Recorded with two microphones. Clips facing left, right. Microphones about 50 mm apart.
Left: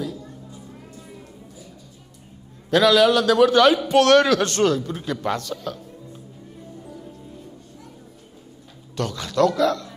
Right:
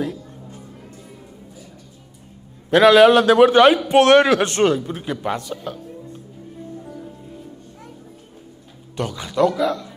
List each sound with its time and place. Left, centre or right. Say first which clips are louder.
2.7 s a man's voice: right 5 dB; right
8.9 s a man's voice: even; centre